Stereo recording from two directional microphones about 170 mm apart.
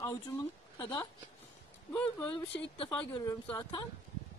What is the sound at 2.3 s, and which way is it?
Speech, 30° left (ahead or behind).